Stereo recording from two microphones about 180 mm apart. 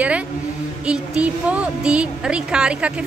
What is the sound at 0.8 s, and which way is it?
A woman's voice, 5° right (ahead or behind).